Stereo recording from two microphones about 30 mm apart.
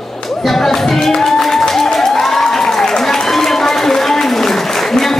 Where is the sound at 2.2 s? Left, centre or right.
Centre.